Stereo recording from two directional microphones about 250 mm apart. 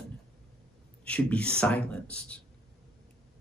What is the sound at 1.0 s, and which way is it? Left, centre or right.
Speech, centre.